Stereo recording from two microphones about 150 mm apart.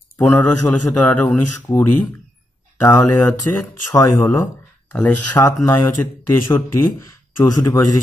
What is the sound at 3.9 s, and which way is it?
Speech, 25° left (ahead or behind).